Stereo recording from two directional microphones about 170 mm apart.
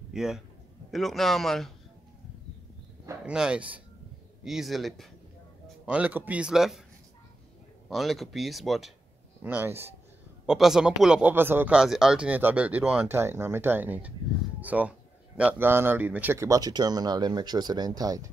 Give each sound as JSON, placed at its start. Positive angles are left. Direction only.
{"t": 0.1, "sound": "a man's voice", "side_deg": 0}
{"t": 3.3, "sound": "speech", "side_deg": -5}
{"t": 7.9, "sound": "speech", "side_deg": 0}
{"t": 9.4, "sound": "speech", "side_deg": -10}